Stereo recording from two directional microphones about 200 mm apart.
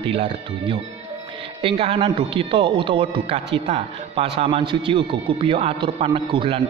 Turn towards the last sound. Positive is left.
turn(degrees=-25)  # may be behind; listen again after turning